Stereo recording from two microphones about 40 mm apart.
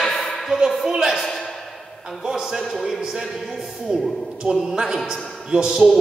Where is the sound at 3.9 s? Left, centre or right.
Centre.